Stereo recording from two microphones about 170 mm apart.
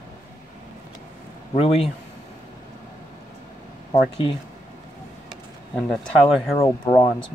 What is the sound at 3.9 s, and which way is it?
Speech, 30° left (ahead or behind).